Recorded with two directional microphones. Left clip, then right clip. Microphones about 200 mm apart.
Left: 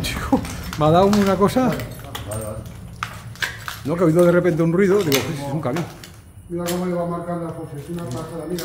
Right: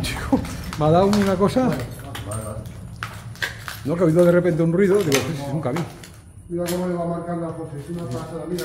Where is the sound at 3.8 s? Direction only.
10° left (ahead or behind).